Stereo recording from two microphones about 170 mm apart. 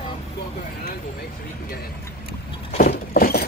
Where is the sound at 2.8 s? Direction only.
60° left (ahead or behind).